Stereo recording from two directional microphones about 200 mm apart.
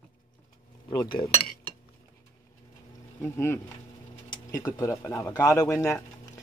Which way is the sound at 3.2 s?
10° left (ahead or behind).